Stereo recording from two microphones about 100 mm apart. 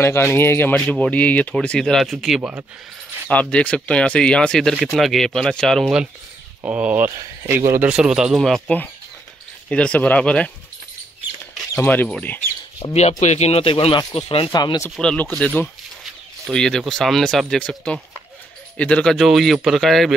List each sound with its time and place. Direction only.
0.0 s speech: 25° left (ahead or behind); by 2.5 s 5° right (ahead or behind)
3.3 s speech: 15° left (ahead or behind)
6.6 s speech: 15° right (ahead or behind)
9.7 s speech: 10° left (ahead or behind)
11.7 s speech: 20° left (ahead or behind)
12.8 s speech: 65° left (ahead or behind)
13.4 s speech: 80° left
14.5 s speech: 45° left (ahead or behind)
15.0 s speech: 15° left (ahead or behind)
19.1 s speech: centre (ahead or behind)